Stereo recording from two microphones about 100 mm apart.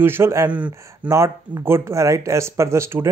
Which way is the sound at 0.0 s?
25° right (ahead or behind).